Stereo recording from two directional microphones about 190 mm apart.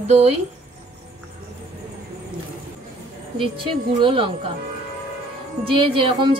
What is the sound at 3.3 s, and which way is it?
Speech, 25° right (ahead or behind).